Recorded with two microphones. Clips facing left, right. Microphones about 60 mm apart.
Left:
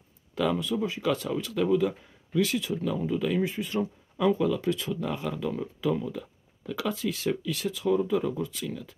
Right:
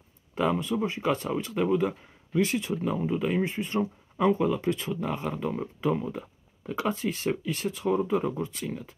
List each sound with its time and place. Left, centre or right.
0.3 s speech: right